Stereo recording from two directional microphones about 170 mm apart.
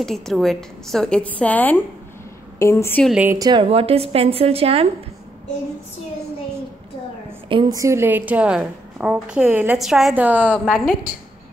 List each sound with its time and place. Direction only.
0.0 s a woman's voice: centre (ahead or behind)
3.1 s a woman's voice: 5° right (ahead or behind)
3.3 s a woman's voice: 25° right (ahead or behind)
7.4 s a woman's voice: 30° right (ahead or behind)
7.7 s a woman's voice: 15° right (ahead or behind)
10.5 s a woman's voice: 5° left (ahead or behind)